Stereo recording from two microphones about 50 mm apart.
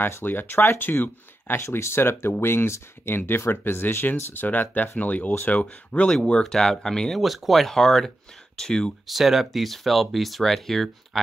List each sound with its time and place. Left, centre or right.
0.2 s speech: left
1.8 s speech: left
6.4 s speech: centre
9.0 s speech: centre